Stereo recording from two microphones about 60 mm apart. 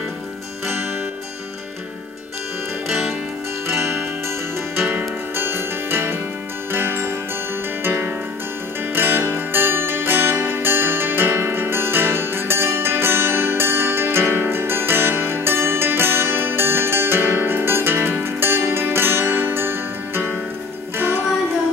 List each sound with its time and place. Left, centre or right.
2.9 s music: centre
3.6 s music: right